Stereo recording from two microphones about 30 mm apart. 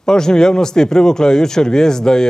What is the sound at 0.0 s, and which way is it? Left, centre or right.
Speech, left.